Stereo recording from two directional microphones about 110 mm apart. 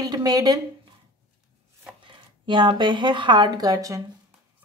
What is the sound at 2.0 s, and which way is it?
Speech, 50° right (ahead or behind).